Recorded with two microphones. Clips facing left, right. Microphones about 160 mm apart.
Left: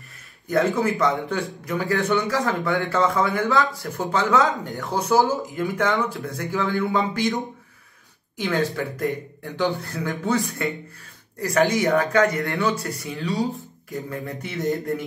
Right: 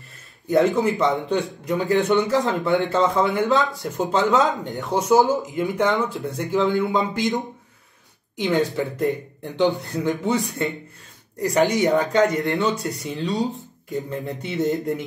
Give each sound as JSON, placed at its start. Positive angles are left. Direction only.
{"t": 0.5, "sound": "a man's voice", "side_deg": -20}
{"t": 8.4, "sound": "a man's voice", "side_deg": -20}